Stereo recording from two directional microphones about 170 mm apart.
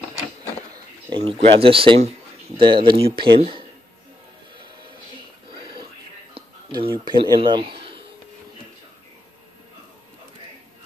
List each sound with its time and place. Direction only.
1.1 s speech: 35° right (ahead or behind)
6.3 s a man's voice: 30° right (ahead or behind)